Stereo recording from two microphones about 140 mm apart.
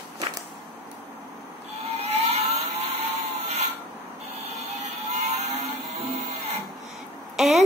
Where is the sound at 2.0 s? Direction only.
45° right (ahead or behind).